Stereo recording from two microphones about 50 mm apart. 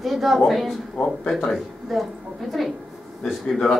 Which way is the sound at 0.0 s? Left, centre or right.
Centre.